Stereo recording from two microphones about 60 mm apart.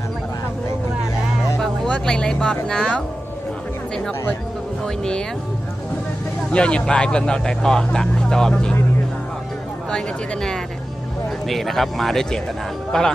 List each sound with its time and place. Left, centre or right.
1.9 s speech: centre
2.3 s speech: left
4.8 s speech: centre
6.5 s speech: centre
9.8 s speech: centre